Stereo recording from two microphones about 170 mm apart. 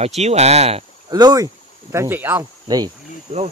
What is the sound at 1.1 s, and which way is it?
Speech, 20° right (ahead or behind).